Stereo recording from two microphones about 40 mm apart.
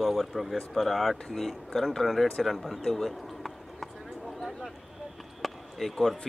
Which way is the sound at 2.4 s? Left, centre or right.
Centre.